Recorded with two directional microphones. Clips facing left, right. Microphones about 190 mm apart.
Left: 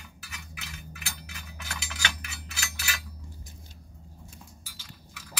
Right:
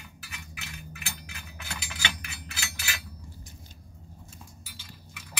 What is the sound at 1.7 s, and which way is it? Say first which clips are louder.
Cutlery: even; 15° right (ahead or behind).